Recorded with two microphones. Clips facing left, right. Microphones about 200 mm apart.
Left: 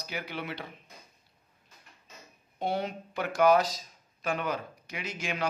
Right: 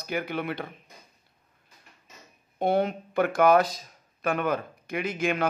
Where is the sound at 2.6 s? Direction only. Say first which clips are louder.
Right 7 dB; 55° right (ahead or behind).